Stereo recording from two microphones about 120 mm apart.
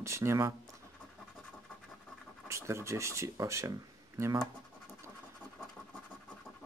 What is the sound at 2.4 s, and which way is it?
Speech, 25° right (ahead or behind).